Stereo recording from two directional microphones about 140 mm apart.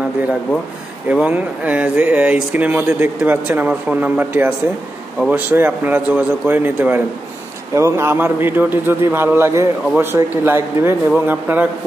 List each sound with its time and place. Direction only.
1.0 s a man's voice: 10° right (ahead or behind)